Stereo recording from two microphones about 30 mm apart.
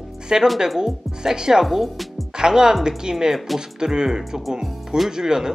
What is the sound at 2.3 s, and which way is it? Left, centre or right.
Speech, right.